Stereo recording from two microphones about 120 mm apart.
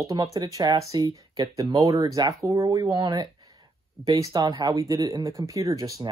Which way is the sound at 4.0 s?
30° right (ahead or behind).